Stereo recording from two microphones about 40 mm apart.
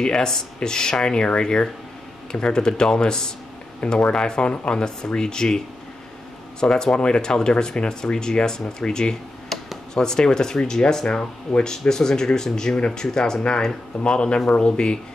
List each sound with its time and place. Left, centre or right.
0.0 s speech: centre
6.6 s speech: centre